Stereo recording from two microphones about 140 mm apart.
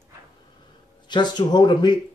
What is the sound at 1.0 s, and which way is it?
Speech, 30° left (ahead or behind).